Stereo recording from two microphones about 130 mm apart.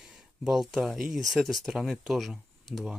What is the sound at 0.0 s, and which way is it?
Speech, 5° right (ahead or behind).